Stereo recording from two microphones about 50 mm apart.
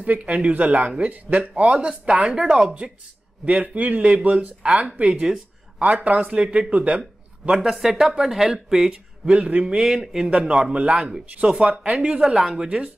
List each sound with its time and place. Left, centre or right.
0.0 s speech: right
2.3 s speech: centre
3.4 s a man's voice: right
5.1 s speech: centre
5.8 s speech: right
7.0 s speech: centre
9.5 s speech: right
9.8 s speech: centre
12.6 s speech: right